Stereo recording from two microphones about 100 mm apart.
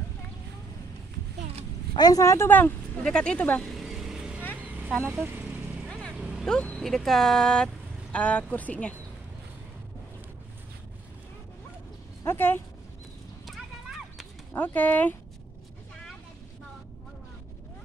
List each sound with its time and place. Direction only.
2.0 s speech: 40° left (ahead or behind); by 2.7 s 20° left (ahead or behind)
3.0 s speech: 10° left (ahead or behind)
3.7 s vehicle: 5° right (ahead or behind)
4.6 s a sound: 15° right (ahead or behind)
5.0 s vehicle: 20° right (ahead or behind)
5.9 s vehicle: 5° left (ahead or behind)
6.1 s vehicle: 10° right (ahead or behind)
6.4 s speech: 10° left (ahead or behind)
12.2 s speech: 20° left (ahead or behind)
13.5 s horse: centre (ahead or behind)
14.5 s speech: 20° left (ahead or behind)